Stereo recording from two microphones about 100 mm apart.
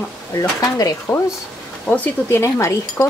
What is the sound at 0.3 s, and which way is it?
Speech, 35° left (ahead or behind).